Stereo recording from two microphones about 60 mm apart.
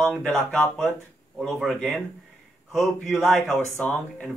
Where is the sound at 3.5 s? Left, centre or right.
Left.